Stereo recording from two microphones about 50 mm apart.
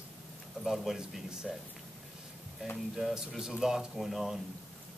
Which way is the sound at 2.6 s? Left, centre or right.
Centre.